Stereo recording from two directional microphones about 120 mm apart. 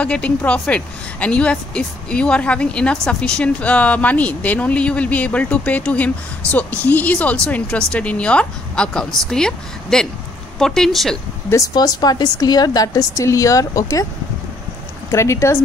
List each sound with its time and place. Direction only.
0.0 s a woman's voice: 10° left (ahead or behind)
11.5 s a woman's voice: 30° left (ahead or behind)
15.0 s speech: 25° left (ahead or behind)